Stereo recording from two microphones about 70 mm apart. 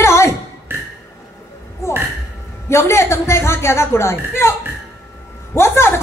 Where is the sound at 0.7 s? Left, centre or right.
Right.